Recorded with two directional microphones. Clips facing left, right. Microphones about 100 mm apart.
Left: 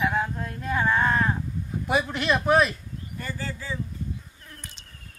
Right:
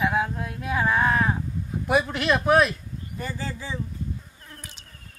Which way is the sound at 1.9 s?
Centre (ahead or behind).